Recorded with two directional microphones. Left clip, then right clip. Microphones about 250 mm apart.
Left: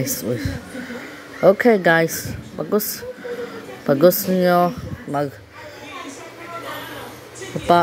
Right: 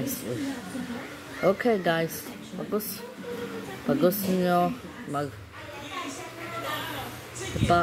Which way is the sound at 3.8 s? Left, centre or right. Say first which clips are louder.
Left 10 dB; left.